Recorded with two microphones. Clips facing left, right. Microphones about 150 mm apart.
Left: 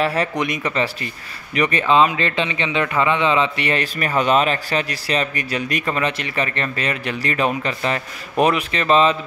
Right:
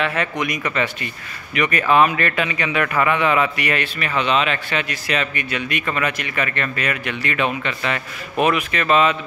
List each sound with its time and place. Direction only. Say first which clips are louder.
0.0 s a man's voice: left 2 dB; 35° left (ahead or behind)